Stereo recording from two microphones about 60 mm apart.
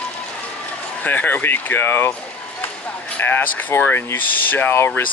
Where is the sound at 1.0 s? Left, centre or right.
Left.